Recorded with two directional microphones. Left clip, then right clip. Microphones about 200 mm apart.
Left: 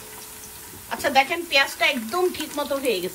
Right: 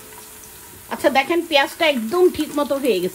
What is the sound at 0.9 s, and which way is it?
Speech, 55° right (ahead or behind).